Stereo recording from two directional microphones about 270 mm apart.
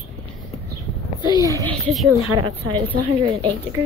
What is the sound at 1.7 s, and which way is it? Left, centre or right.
Speech, centre.